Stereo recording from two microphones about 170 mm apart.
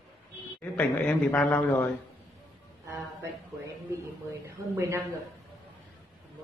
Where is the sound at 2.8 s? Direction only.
15° right (ahead or behind).